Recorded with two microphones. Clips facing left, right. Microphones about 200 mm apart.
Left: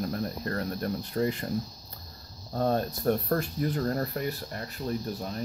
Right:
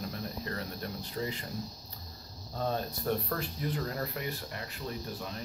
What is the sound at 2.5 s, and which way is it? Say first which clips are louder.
Speech: left 6 dB; 50° left (ahead or behind).